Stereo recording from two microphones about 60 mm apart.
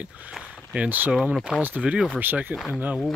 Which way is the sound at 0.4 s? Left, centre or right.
Centre.